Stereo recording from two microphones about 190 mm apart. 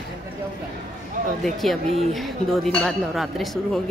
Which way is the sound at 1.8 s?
30° right (ahead or behind).